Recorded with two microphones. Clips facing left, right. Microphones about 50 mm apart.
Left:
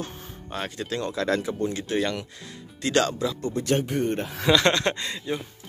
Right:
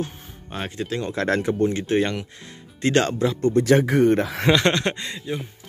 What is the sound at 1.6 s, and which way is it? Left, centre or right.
Speech, right.